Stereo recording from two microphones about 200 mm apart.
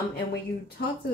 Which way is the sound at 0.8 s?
55° left (ahead or behind).